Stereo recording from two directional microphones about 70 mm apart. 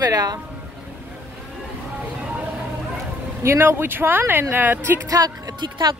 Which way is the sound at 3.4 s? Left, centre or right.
Right.